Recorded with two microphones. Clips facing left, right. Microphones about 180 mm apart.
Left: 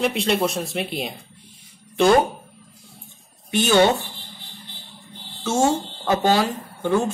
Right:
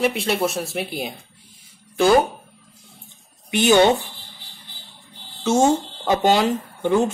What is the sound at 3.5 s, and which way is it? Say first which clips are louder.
Speech: right 2 dB; 15° right (ahead or behind).